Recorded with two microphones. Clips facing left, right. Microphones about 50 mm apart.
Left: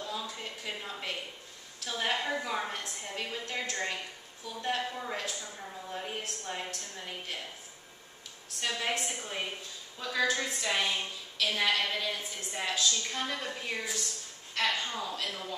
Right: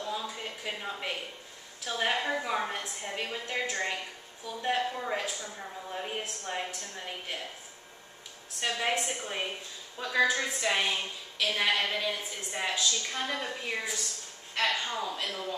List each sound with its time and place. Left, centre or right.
0.0 s a sound: centre
1.9 s a woman's voice: centre
8.5 s a woman's voice: centre